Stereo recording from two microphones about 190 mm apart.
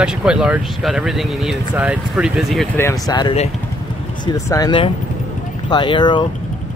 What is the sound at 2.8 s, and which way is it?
Speech, 15° left (ahead or behind).